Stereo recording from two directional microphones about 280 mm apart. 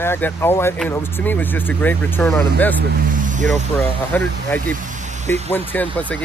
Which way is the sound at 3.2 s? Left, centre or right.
Right.